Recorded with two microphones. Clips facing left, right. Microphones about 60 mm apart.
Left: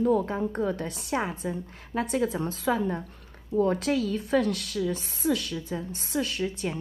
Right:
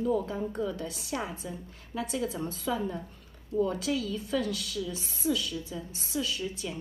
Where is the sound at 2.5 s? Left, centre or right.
Left.